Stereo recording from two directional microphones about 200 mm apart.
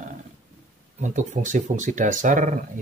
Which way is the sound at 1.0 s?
40° right (ahead or behind).